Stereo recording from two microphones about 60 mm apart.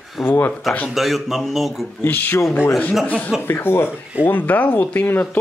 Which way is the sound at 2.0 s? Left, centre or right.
Left.